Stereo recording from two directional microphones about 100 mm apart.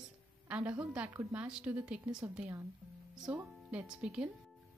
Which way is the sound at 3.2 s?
10° right (ahead or behind).